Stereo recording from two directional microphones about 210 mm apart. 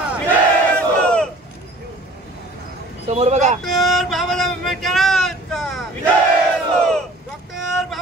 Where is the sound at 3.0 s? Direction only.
30° right (ahead or behind).